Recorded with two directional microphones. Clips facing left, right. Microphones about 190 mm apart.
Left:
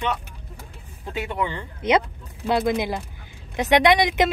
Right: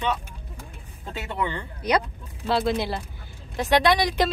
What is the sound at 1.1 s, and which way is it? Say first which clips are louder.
A woman's voice: left 2 dB; 15° left (ahead or behind).